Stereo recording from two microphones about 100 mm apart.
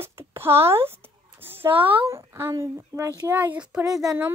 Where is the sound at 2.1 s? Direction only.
25° right (ahead or behind).